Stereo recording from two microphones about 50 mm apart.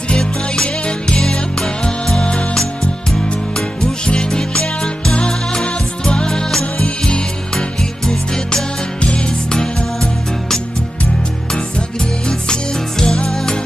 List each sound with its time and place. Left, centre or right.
0.1 s music: centre
9.0 s music: centre
13.0 s music: centre